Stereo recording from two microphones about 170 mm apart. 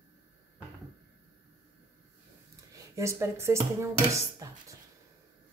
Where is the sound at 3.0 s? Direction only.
15° right (ahead or behind).